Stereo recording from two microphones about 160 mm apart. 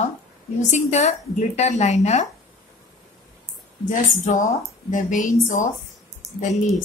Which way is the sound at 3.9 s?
55° left (ahead or behind).